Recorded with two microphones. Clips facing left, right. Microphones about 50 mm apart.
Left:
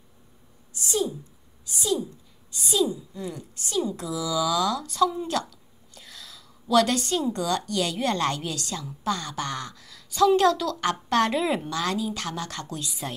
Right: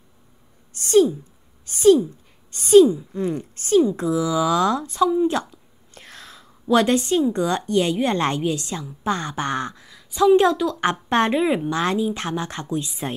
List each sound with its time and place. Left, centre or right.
0.7 s a sound: right
1.7 s a woman's voice: right
5.0 s a woman's voice: centre
5.3 s a woman's voice: right
5.9 s a woman's voice: right; by 11.7 s centre
11.7 s a woman's voice: right